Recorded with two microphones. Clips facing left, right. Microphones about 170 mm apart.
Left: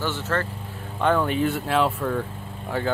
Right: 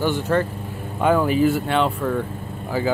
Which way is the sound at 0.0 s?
15° right (ahead or behind).